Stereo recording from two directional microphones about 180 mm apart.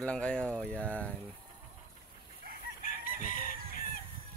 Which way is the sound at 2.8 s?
50° left (ahead or behind).